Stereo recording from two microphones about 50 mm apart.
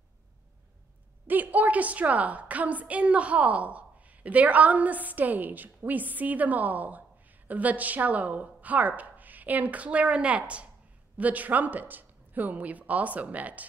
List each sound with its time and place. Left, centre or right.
1.2 s a woman's voice: right